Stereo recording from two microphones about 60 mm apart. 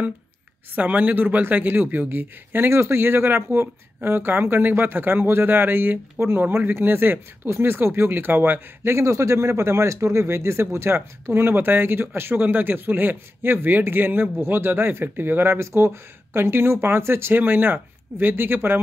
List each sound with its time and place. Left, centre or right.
0.7 s speech: right